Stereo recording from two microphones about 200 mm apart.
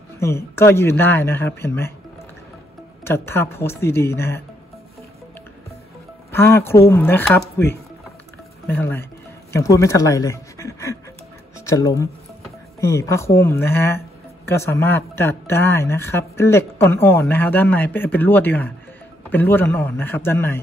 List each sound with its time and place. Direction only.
0.2 s speech: 15° left (ahead or behind)
3.0 s speech: 10° left (ahead or behind)
6.3 s speech: 10° left (ahead or behind)
8.6 s speech: 10° left (ahead or behind)